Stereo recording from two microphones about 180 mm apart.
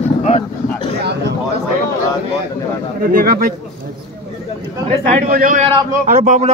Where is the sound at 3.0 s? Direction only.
55° right (ahead or behind).